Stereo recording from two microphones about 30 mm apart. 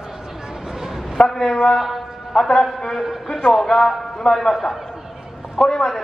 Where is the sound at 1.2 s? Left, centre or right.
Left.